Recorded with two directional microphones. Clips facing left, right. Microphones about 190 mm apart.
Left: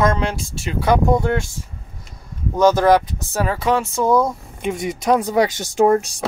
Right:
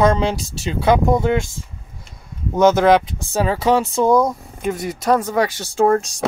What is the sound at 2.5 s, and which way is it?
Speech, 20° right (ahead or behind).